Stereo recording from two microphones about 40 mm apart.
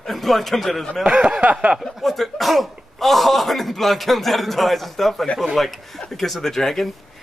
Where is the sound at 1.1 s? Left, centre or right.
Right.